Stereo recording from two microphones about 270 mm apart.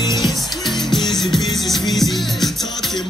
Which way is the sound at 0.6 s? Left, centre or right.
Centre.